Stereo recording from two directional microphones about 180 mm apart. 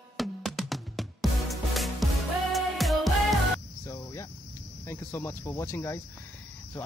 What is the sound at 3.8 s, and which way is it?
Cricket, 20° left (ahead or behind).